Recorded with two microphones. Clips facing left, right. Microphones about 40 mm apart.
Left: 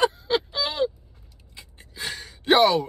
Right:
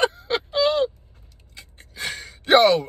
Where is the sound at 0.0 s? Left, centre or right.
Right.